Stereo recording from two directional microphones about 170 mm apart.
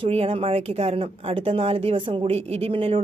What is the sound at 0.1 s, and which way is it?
Speech, 35° right (ahead or behind).